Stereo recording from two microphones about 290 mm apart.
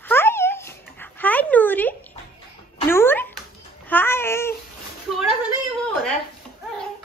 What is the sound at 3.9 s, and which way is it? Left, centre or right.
Babbling, centre.